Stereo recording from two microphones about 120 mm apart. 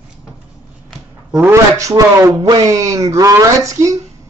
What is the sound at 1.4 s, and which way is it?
A man's voice, 20° right (ahead or behind).